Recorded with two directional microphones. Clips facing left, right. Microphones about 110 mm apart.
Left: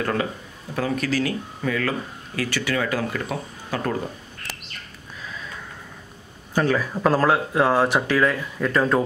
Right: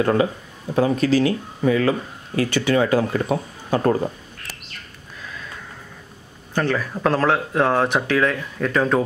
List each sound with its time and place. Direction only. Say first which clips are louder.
0.0 s speech: right 6 dB; 25° right (ahead or behind)
6.5 s speech: left 1 dB; 5° left (ahead or behind)